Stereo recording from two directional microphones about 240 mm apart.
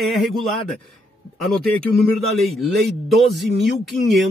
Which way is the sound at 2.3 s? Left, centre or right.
Centre.